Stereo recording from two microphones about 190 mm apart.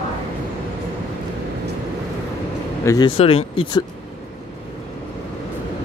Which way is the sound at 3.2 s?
30° left (ahead or behind).